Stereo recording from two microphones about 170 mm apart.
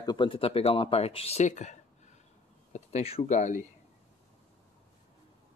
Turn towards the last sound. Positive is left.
turn(degrees=45)  # may be behind; listen again after turning